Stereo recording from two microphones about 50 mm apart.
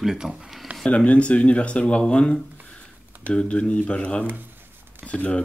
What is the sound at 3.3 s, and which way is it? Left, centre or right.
Speech, left.